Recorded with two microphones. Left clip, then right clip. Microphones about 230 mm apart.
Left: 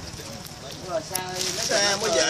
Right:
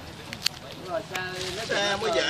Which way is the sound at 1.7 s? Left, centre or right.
Left.